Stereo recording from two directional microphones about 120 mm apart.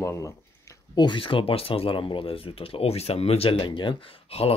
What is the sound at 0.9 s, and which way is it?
Speech, 40° left (ahead or behind).